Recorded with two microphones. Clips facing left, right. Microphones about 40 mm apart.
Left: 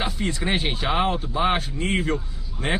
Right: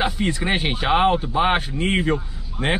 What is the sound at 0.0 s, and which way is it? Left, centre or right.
Speech, centre.